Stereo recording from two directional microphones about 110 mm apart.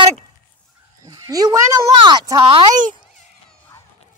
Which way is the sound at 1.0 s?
35° right (ahead or behind).